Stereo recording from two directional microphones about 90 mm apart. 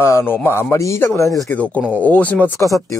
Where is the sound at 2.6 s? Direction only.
40° left (ahead or behind).